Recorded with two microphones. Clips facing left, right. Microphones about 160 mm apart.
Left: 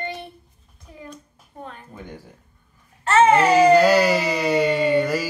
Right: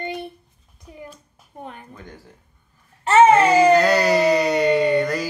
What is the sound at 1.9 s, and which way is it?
Speech, 20° left (ahead or behind).